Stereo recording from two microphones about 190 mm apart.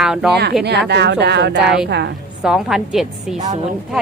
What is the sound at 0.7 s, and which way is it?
Speech, 65° right (ahead or behind).